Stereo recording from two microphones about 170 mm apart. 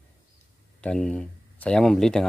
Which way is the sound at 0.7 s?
5° left (ahead or behind).